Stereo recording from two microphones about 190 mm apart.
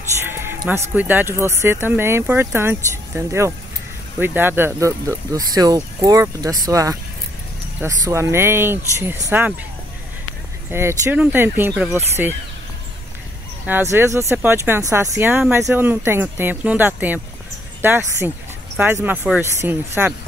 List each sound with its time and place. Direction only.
0.2 s music: 10° right (ahead or behind)
0.9 s speech: 10° right (ahead or behind)
10.7 s speech: 10° right (ahead or behind)
13.7 s speech: 10° right (ahead or behind)